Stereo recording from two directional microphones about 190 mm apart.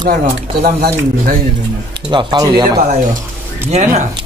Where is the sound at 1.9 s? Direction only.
25° right (ahead or behind).